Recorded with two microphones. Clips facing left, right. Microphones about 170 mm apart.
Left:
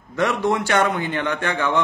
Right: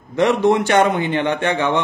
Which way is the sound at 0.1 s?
20° right (ahead or behind).